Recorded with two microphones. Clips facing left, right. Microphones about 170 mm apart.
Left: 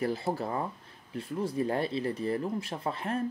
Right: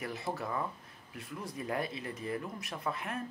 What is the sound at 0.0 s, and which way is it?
Speech, 30° left (ahead or behind).